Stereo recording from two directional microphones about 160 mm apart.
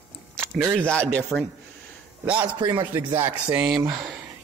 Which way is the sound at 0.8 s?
5° left (ahead or behind).